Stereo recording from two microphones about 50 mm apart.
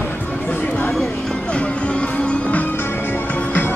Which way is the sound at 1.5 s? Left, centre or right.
Left.